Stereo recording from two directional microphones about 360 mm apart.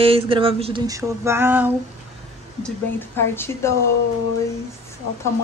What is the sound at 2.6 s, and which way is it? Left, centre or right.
A woman's voice, centre.